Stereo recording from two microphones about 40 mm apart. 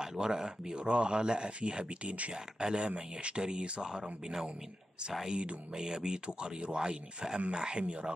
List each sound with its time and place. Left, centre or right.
0.0 s speech: centre